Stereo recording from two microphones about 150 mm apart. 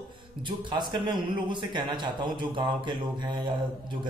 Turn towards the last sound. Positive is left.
turn(degrees=-30)  # may be behind; listen again after turning